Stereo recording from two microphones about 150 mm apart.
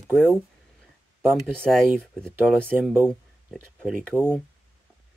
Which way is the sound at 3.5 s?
10° right (ahead or behind).